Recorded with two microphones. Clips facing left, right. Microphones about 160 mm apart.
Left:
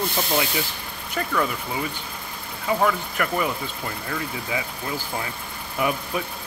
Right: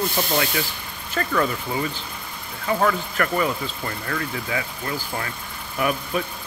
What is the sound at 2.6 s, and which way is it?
Speech, 10° left (ahead or behind).